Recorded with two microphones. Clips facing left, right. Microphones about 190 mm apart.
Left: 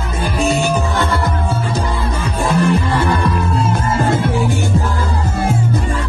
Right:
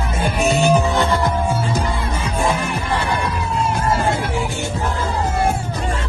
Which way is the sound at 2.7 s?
55° left (ahead or behind).